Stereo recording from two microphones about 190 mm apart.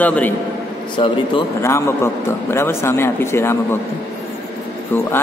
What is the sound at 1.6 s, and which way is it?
A man's voice, 15° left (ahead or behind).